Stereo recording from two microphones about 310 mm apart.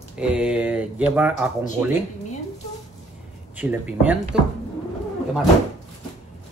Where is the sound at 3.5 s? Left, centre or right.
Centre.